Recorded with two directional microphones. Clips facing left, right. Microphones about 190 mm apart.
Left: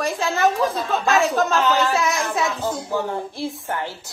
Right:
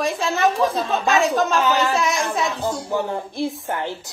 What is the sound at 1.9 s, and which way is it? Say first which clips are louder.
Speech: even; centre (ahead or behind).